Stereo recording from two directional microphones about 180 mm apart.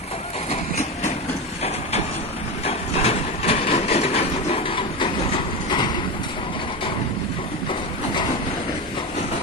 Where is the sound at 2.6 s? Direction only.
35° left (ahead or behind).